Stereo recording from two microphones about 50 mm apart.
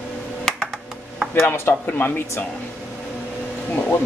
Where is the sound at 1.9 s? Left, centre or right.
Left.